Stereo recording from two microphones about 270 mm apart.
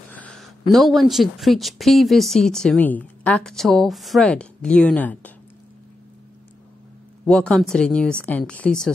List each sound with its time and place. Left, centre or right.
0.1 s speech: centre
7.2 s speech: centre